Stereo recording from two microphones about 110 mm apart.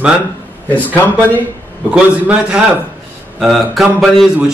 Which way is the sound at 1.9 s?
10° right (ahead or behind).